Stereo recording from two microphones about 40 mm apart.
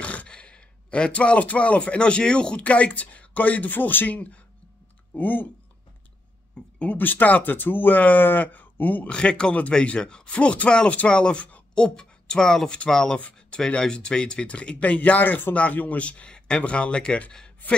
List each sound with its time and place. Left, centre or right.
0.0 s a sound: left
0.3 s a man's voice: left
4.1 s speech: left
5.1 s speech: left
6.6 s a sound: left
7.0 s speech: left
9.1 s speech: left
17.6 s speech: left